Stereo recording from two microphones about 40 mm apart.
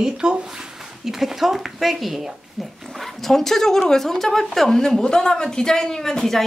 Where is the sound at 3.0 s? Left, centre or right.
Centre.